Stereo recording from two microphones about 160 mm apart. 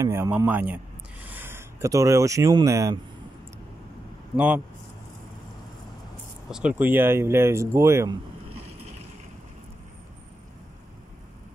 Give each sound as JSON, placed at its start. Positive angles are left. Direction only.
{"t": 0.0, "sound": "speech", "side_deg": -15}
{"t": 6.5, "sound": "speech", "side_deg": -10}